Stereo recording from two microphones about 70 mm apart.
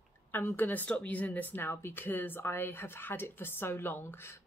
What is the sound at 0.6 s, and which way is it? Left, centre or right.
Speech, left.